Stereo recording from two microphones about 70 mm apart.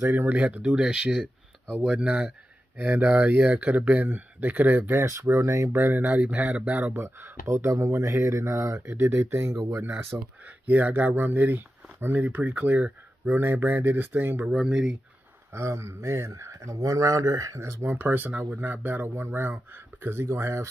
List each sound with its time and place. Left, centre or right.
0.0 s speech: right
5.0 s speech: right
5.8 s speech: right
6.9 s speech: right
10.1 s speech: right
14.5 s speech: centre
15.5 s speech: right
17.9 s speech: right